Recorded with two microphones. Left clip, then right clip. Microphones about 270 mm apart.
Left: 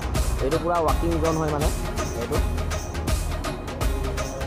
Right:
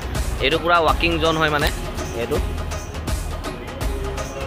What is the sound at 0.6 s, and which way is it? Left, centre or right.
Speech, right.